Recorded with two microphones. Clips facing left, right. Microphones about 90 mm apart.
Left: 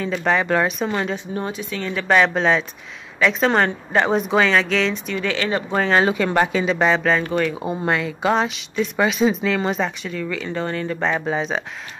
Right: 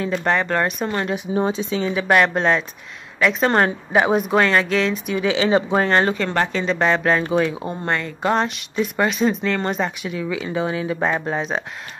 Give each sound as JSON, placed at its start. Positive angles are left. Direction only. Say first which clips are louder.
{"t": 0.0, "sound": "a woman's voice", "louder": "even", "side_deg": 0}
{"t": 1.1, "sound": "a woman's voice", "louder": "right 5 dB", "side_deg": -15}
{"t": 5.8, "sound": "a woman's voice", "louder": "even", "side_deg": 5}